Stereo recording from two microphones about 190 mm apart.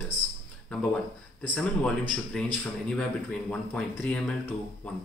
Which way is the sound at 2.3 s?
5° left (ahead or behind).